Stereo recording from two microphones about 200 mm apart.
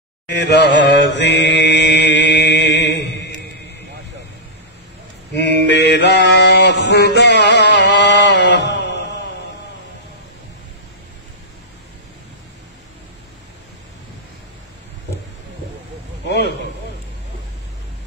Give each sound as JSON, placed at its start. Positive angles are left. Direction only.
{"t": 0.3, "sound": "mantra", "side_deg": 60}
{"t": 5.3, "sound": "mantra", "side_deg": 60}
{"t": 16.3, "sound": "a sound", "side_deg": 55}